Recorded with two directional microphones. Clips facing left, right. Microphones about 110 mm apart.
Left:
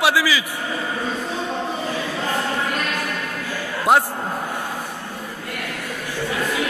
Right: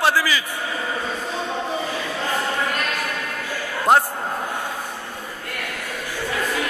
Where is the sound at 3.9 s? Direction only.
5° left (ahead or behind).